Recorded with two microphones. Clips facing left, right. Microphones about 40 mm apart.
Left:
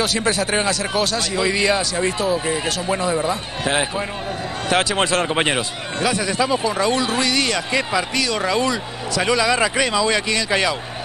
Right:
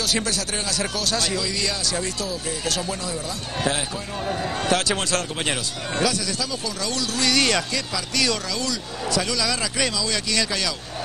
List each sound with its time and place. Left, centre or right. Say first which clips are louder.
0.2 s speech: left 8 dB; left